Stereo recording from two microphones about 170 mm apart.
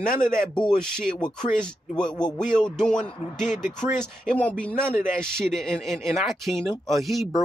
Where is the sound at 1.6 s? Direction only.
5° left (ahead or behind).